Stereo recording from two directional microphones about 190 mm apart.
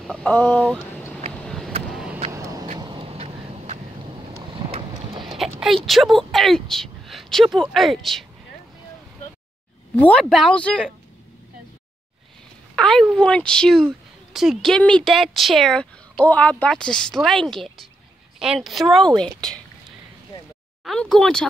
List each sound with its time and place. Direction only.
0.0 s speech: 5° left (ahead or behind)
1.3 s vehicle: 5° left (ahead or behind)
2.3 s vehicle: 15° right (ahead or behind)
5.2 s speech: centre (ahead or behind)
9.9 s speech: 5° left (ahead or behind)
12.7 s speech: centre (ahead or behind)
20.8 s speech: 5° left (ahead or behind)